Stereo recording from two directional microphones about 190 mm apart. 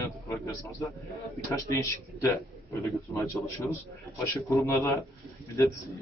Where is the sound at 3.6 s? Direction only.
Centre (ahead or behind).